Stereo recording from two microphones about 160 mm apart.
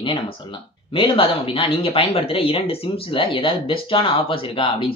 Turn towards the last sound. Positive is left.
turn(degrees=35)  # may be behind; listen again after turning